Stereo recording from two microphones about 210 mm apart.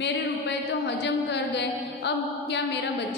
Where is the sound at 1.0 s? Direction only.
55° left (ahead or behind).